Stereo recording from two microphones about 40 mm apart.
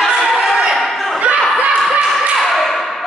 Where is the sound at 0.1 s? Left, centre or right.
Centre.